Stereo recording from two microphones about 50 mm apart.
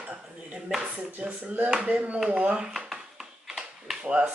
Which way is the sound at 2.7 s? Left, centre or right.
Centre.